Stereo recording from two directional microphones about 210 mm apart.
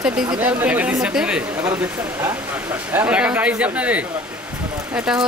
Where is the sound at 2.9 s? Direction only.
5° right (ahead or behind).